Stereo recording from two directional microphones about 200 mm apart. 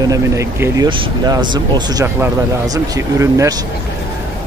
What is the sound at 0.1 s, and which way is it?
Speech, 15° right (ahead or behind).